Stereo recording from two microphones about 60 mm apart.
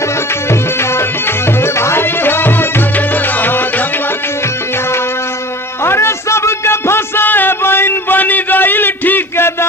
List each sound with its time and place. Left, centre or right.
0.5 s music: left
5.9 s music: left
7.2 s a sound: left